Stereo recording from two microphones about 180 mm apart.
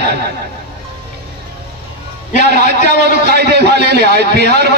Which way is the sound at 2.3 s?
65° right (ahead or behind).